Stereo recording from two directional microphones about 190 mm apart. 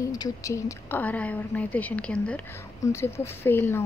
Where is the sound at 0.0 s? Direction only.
15° left (ahead or behind).